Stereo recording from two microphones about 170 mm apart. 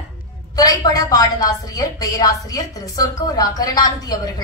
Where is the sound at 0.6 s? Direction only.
20° left (ahead or behind).